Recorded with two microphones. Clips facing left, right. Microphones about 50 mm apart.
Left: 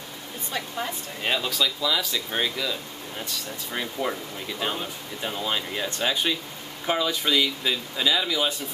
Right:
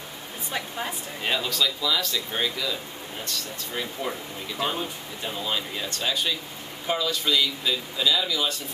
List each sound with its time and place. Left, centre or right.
0.5 s speech: centre
1.2 s speech: centre
5.2 s speech: centre